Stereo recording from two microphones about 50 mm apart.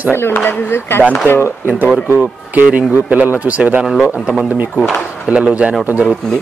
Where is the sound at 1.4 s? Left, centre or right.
Right.